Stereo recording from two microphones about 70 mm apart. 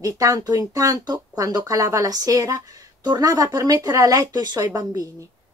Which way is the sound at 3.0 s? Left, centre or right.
Right.